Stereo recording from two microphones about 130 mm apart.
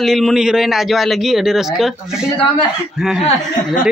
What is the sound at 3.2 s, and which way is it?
Speech, 90° left.